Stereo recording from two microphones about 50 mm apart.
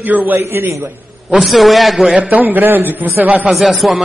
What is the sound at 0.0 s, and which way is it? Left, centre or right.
Speech, right.